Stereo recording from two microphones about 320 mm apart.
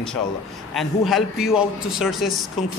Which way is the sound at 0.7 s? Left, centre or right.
Centre.